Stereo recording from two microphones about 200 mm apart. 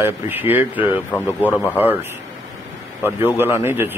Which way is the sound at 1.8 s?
10° right (ahead or behind).